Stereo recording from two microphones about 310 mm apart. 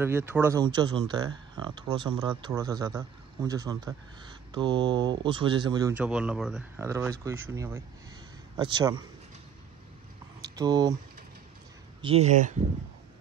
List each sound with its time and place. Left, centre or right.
0.0 s speech: centre
10.4 s speech: centre
12.0 s speech: centre